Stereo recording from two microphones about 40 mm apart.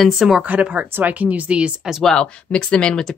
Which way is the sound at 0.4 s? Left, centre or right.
Right.